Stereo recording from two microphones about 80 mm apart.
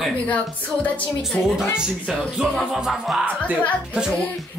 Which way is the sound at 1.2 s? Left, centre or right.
Centre.